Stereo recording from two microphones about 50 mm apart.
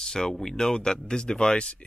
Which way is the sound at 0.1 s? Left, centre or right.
Centre.